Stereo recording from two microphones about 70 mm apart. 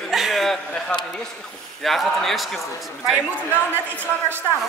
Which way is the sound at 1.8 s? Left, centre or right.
Centre.